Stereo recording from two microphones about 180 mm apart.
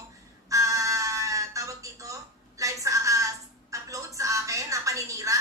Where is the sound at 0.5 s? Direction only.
20° right (ahead or behind).